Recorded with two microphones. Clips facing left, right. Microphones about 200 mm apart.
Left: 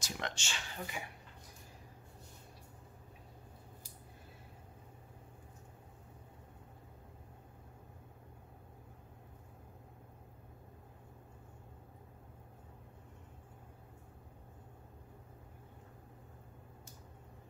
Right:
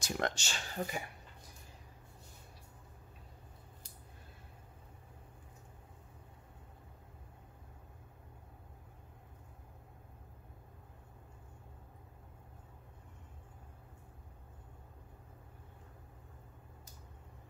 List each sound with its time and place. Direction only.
0.0 s speech: 45° right (ahead or behind)